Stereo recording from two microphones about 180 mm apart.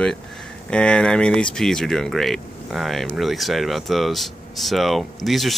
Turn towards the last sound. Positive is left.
turn(degrees=0)  # may be behind; listen again after turning